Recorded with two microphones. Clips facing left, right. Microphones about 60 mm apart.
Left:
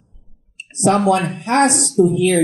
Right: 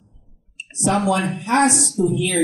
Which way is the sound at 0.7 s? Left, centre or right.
Left.